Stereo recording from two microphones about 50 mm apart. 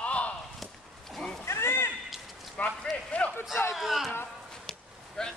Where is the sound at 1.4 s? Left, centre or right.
Left.